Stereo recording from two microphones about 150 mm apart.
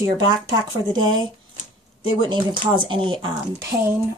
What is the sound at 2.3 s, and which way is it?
Speech, 30° right (ahead or behind).